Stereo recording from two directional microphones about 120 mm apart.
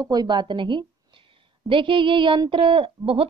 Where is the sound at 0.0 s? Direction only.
35° right (ahead or behind).